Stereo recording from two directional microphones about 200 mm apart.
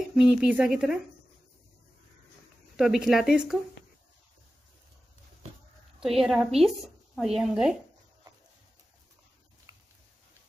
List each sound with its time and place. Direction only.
0.1 s speech: 5° right (ahead or behind)
2.7 s speech: centre (ahead or behind)
5.9 s a woman's voice: centre (ahead or behind)
9.7 s a sound: 15° right (ahead or behind)